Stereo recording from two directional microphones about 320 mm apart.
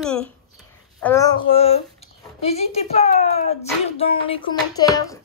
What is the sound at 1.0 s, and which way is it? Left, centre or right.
Speech, centre.